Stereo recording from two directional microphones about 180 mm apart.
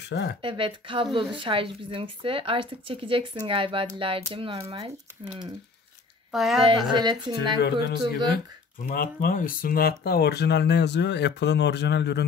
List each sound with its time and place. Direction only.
0.0 s speech: 70° left (ahead or behind)
0.4 s speech: 30° right (ahead or behind)
6.3 s a woman's voice: centre (ahead or behind)
6.6 s speech: 25° right (ahead or behind)
7.6 s a man's voice: 60° left (ahead or behind)